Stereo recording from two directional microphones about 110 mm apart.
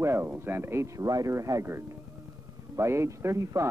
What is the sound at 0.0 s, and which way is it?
Speech, 20° right (ahead or behind).